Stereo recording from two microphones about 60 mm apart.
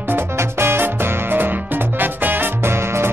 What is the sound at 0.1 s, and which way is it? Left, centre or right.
Music, right.